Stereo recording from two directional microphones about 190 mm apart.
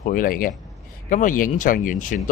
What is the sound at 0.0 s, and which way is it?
Speech, 45° left (ahead or behind).